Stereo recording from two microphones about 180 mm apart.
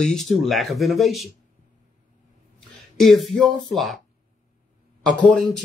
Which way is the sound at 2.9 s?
Centre (ahead or behind).